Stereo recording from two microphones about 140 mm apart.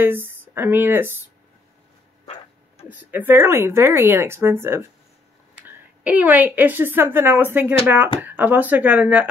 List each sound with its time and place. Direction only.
0.0 s speech: 15° right (ahead or behind)
2.9 s a woman's voice: 15° right (ahead or behind)